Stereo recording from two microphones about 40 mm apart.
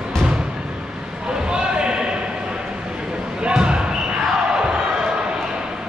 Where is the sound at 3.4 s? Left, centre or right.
Right.